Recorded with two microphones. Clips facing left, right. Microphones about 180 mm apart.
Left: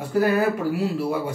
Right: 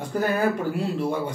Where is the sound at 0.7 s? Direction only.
5° left (ahead or behind).